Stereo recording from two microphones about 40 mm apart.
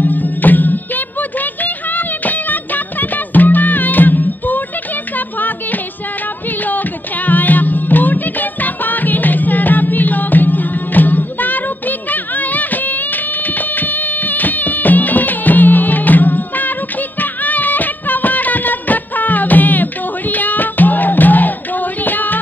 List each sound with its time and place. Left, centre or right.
0.0 s music: left
7.2 s music: left
12.1 s a sound: left
13.6 s music: left
22.0 s female singing: left